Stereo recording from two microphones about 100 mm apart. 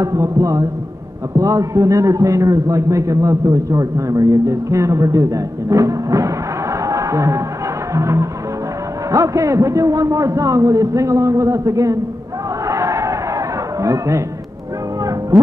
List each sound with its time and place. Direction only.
0.0 s a man's voice: 30° right (ahead or behind)
6.9 s music: 30° right (ahead or behind)
7.9 s a man's voice: 30° right (ahead or behind)
12.6 s a sound: 30° right (ahead or behind)
13.8 s a man's voice: 30° right (ahead or behind)